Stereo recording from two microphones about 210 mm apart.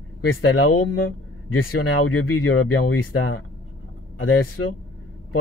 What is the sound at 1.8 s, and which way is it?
Speech, 90° left.